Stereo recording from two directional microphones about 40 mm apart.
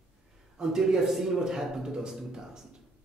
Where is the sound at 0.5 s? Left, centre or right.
Centre.